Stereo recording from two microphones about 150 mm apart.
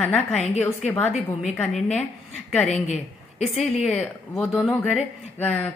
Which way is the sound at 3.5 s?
5° right (ahead or behind).